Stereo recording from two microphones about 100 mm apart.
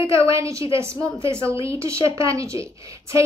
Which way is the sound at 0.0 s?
30° right (ahead or behind).